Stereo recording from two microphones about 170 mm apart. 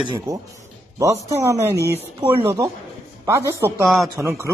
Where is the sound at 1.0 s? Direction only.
20° right (ahead or behind).